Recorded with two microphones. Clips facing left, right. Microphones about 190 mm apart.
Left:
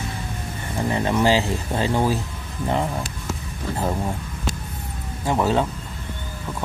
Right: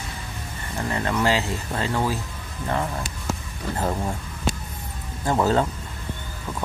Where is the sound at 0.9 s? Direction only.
20° left (ahead or behind).